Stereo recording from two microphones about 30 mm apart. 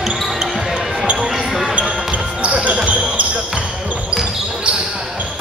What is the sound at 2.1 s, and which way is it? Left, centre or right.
Basketball bounce, right.